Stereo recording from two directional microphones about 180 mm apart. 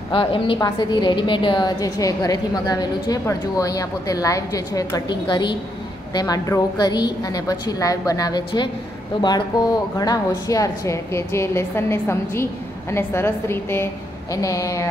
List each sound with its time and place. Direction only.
0.1 s a woman's voice: 30° left (ahead or behind)